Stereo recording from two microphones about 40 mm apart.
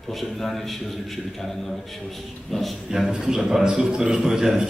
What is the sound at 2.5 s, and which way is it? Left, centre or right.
Speech, centre.